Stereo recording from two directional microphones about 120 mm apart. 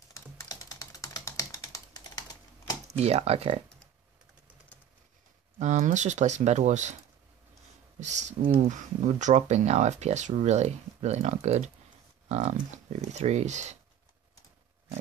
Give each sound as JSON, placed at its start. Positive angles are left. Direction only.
{"t": 0.1, "sound": "typing", "side_deg": 25}
{"t": 3.0, "sound": "speech", "side_deg": -60}
{"t": 5.6, "sound": "speech", "side_deg": -80}
{"t": 8.0, "sound": "speech", "side_deg": -80}
{"t": 12.3, "sound": "speech", "side_deg": -80}